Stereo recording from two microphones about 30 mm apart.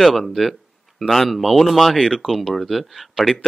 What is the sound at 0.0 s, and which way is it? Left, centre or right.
A man's voice, centre.